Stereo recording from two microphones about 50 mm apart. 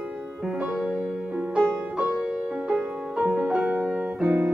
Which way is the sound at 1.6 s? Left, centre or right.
Right.